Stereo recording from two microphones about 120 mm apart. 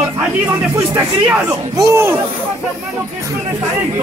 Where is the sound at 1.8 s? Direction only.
20° right (ahead or behind).